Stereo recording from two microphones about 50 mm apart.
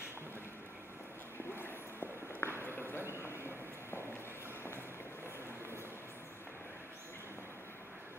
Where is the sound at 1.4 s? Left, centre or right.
Left.